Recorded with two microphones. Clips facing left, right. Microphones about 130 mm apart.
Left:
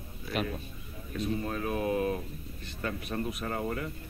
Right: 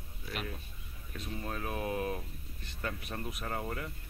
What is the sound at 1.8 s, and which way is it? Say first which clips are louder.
Speech: left 6 dB; 5° left (ahead or behind).